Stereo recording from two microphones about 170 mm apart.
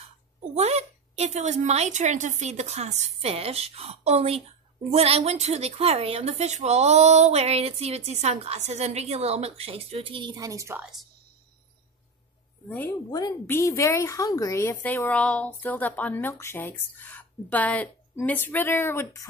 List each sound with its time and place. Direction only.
0.4 s a woman's voice: 40° right (ahead or behind); by 10.8 s 20° right (ahead or behind)
10.8 s a woman's voice: centre (ahead or behind)
12.6 s a woman's voice: 10° left (ahead or behind)